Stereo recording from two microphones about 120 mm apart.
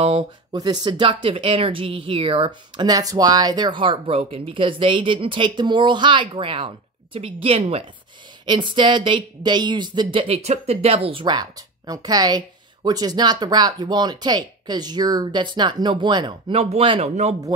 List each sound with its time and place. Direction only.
0.5 s speech: 35° right (ahead or behind); by 7.8 s 55° right (ahead or behind)
8.5 s speech: 40° right (ahead or behind)
11.2 s speech: 35° right (ahead or behind)
17.1 s speech: 65° right (ahead or behind)